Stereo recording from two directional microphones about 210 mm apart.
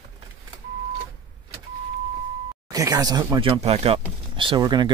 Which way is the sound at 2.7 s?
15° right (ahead or behind).